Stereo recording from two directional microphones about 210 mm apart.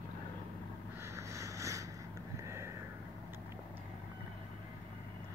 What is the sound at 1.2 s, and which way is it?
Boat, 15° right (ahead or behind).